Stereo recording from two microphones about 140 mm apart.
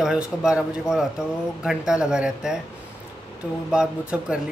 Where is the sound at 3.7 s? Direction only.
5° right (ahead or behind).